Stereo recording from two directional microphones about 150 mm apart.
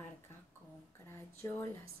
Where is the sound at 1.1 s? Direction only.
15° left (ahead or behind).